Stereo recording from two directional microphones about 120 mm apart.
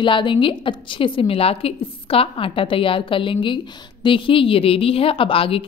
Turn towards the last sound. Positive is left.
turn(degrees=50)  # may be behind; listen again after turning